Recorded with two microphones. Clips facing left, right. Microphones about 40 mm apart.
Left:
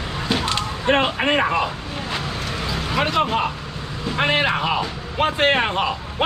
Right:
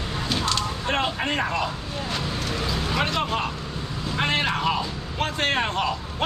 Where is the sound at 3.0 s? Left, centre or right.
Centre.